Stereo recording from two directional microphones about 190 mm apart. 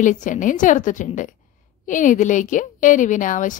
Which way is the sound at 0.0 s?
40° left (ahead or behind).